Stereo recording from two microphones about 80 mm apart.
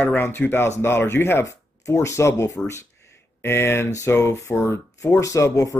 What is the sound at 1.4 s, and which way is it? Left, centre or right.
Speech, left.